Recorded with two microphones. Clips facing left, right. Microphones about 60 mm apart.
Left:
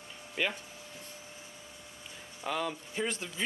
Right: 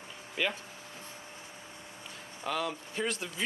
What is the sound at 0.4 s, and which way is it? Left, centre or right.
Speech, centre.